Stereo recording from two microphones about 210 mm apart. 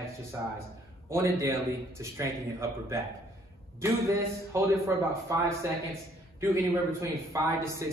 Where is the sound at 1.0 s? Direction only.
15° right (ahead or behind).